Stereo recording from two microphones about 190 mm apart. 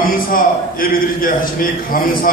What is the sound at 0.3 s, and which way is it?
A man's voice, 45° left (ahead or behind).